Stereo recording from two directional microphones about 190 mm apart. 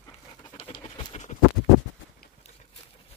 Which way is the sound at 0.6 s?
25° left (ahead or behind).